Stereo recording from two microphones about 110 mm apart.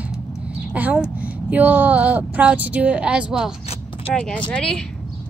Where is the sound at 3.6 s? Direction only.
60° left (ahead or behind).